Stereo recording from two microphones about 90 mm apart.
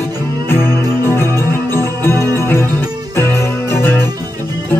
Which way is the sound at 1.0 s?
25° left (ahead or behind).